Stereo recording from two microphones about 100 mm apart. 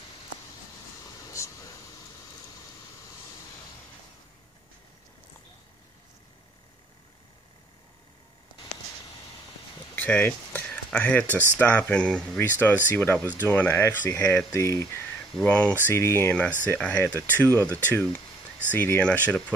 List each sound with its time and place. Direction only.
1.3 s a sound: 30° left (ahead or behind)
9.9 s speech: 20° left (ahead or behind)
14.5 s speech: 35° left (ahead or behind)
15.4 s speech: 10° left (ahead or behind)
15.9 s speech: 25° left (ahead or behind)
16.6 s speech: 15° left (ahead or behind)